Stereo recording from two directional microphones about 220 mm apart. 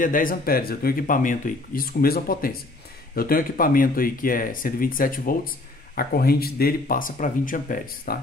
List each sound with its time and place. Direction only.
0.0 s speech: 40° left (ahead or behind)